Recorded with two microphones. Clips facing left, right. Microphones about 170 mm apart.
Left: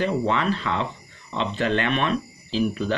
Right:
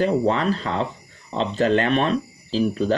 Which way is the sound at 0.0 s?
40° right (ahead or behind).